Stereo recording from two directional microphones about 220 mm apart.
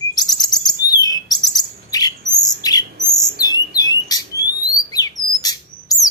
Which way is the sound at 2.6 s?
15° left (ahead or behind).